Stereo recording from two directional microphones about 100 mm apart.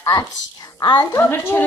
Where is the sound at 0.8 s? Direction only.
45° left (ahead or behind).